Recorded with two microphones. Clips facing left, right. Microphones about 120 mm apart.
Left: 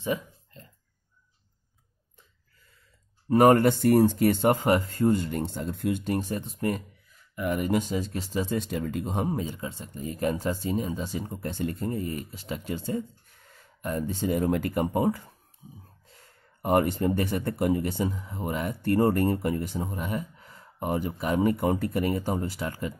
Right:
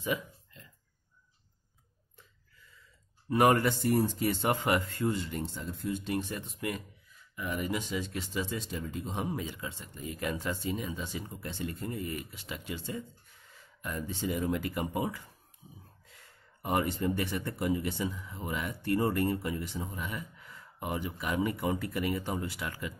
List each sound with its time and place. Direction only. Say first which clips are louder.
0.0 s a sound: left 4 dB; 35° left (ahead or behind)
3.3 s speech: left 6 dB; 40° left (ahead or behind); by 6.0 s 70° left (ahead or behind)
6.0 s speech: left 5 dB; 40° left (ahead or behind); by 9.1 s 60° left (ahead or behind)
9.1 s speech: left 4 dB; 40° left (ahead or behind)